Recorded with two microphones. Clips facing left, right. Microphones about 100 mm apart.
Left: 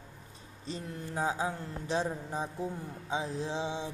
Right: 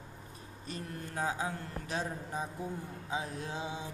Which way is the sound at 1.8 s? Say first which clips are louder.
Left 6 dB; 30° left (ahead or behind).